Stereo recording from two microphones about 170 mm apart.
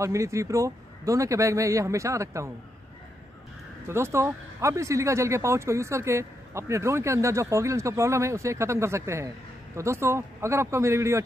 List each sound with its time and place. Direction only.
0.0 s speech: 15° right (ahead or behind)
3.8 s speech: 15° right (ahead or behind)